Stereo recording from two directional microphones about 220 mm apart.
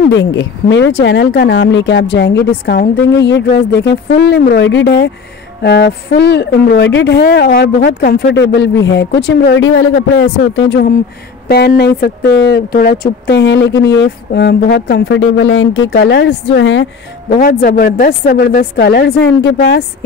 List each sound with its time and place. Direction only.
0.1 s speech: 55° left (ahead or behind)
17.3 s speech: 35° left (ahead or behind); by 19.8 s 55° left (ahead or behind)